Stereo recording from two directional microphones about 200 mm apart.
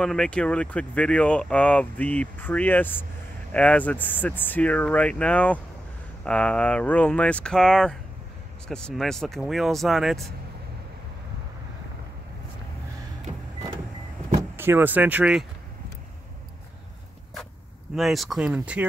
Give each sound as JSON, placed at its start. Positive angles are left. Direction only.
{"t": 0.0, "sound": "speech", "side_deg": 5}
{"t": 14.6, "sound": "speech", "side_deg": -10}
{"t": 17.9, "sound": "speech", "side_deg": 0}